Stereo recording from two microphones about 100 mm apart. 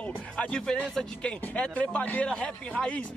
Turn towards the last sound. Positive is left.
turn(degrees=10)  # may be behind; listen again after turning